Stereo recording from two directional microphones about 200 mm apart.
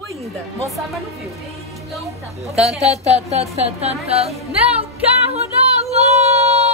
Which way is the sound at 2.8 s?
30° right (ahead or behind).